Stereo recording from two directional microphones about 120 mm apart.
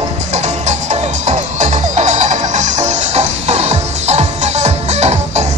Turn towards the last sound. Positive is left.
turn(degrees=-70)  # may be behind; listen again after turning